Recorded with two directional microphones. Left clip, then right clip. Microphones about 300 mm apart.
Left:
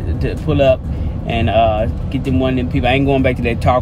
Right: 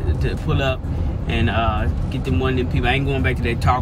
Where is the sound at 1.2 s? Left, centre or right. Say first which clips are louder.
Left 8 dB; centre.